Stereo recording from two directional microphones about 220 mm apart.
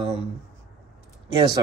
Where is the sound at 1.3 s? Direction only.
20° right (ahead or behind).